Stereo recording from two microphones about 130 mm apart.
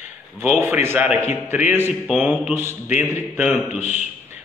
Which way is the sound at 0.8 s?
10° right (ahead or behind).